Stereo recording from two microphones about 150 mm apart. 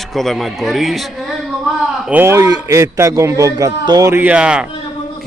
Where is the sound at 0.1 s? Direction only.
Centre (ahead or behind).